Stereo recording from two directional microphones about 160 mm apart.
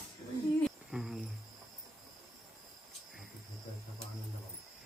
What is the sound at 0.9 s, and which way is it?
Cricket, 5° right (ahead or behind).